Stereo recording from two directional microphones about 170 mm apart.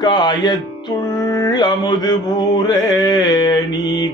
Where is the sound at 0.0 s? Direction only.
25° left (ahead or behind).